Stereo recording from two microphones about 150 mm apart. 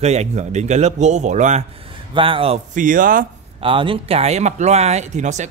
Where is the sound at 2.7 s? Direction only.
65° right (ahead or behind).